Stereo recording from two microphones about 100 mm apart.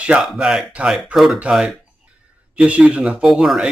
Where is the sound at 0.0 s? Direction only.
10° right (ahead or behind).